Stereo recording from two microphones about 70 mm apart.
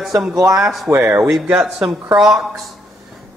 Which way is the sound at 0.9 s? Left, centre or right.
Right.